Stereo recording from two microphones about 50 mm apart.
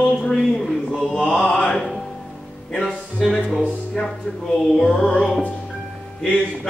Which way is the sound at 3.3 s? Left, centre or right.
Centre.